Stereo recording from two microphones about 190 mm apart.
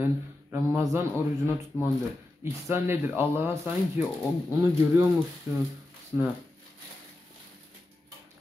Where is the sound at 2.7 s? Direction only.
10° right (ahead or behind).